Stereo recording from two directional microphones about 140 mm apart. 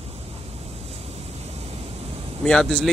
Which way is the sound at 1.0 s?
50° right (ahead or behind).